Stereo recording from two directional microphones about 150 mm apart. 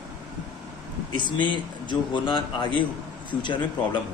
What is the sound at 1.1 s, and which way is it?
Speech, 30° left (ahead or behind).